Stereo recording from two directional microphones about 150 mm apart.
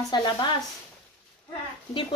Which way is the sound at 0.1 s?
30° left (ahead or behind).